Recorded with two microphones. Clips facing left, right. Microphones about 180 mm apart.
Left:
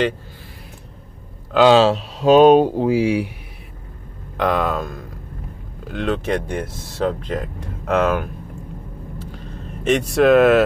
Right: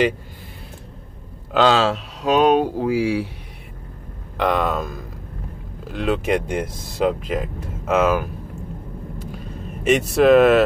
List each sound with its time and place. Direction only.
1.7 s speech: 25° left (ahead or behind)
4.4 s speech: centre (ahead or behind)
9.8 s speech: centre (ahead or behind)